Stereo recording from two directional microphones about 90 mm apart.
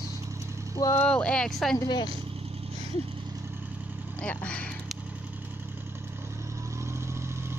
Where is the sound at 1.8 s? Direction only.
55° left (ahead or behind).